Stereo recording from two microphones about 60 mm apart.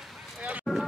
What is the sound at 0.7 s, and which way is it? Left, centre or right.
Run, centre.